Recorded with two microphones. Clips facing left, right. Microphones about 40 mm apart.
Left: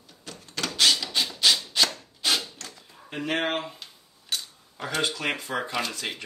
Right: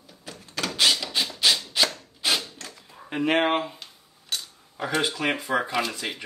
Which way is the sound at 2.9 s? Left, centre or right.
Right.